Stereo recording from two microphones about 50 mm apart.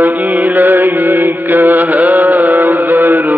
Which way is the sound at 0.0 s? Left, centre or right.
Right.